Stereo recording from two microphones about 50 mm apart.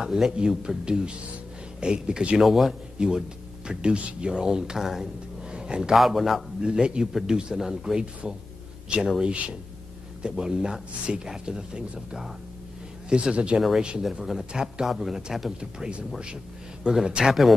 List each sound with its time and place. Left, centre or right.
0.0 s speech: centre
2.4 s a man's voice: centre
3.0 s music: centre
3.8 s speech: centre
5.5 s a sound: centre
5.9 s a man's voice: centre
6.6 s speech: centre
13.6 s a man's voice: centre
15.8 s speech: right